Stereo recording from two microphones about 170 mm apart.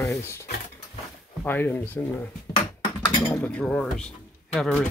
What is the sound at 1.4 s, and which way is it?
Speech, 10° left (ahead or behind).